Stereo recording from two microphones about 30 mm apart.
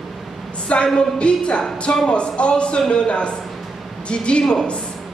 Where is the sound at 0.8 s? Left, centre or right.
Left.